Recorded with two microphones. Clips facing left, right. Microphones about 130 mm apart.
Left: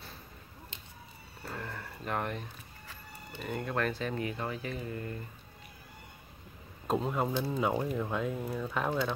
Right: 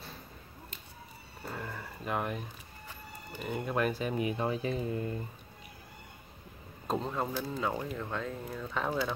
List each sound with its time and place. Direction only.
1.4 s a sound: 5° right (ahead or behind)
3.3 s speech: 5° right (ahead or behind)
6.9 s speech: 5° left (ahead or behind)